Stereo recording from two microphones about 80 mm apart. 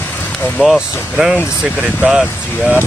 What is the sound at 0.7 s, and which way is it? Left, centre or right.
Speech, centre.